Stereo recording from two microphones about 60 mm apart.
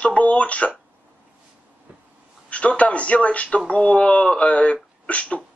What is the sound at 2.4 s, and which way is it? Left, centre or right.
Speech, left.